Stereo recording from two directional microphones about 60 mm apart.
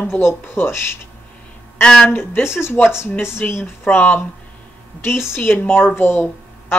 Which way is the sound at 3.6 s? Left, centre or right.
Left.